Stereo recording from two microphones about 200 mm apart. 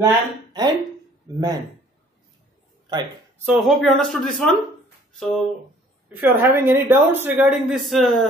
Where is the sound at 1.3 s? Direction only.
20° right (ahead or behind).